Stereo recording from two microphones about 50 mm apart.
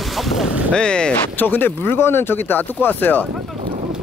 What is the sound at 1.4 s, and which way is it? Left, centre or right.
Speech, left.